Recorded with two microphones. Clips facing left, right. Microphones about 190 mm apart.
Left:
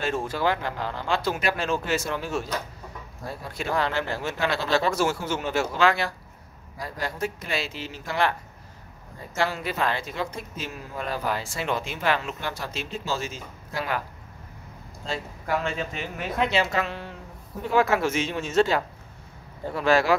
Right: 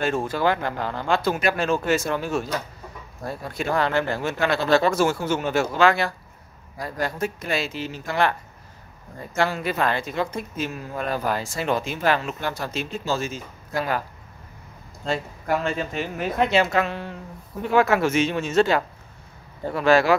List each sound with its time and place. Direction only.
0.0 s speech: 50° right (ahead or behind)
9.3 s speech: 50° right (ahead or behind)
15.6 s speech: 45° right (ahead or behind); by 20.2 s 65° right (ahead or behind)